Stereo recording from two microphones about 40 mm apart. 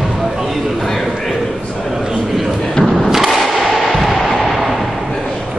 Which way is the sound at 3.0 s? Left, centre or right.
Centre.